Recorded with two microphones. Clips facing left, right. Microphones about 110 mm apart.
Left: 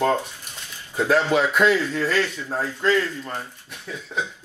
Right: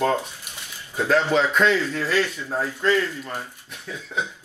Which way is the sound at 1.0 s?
10° left (ahead or behind).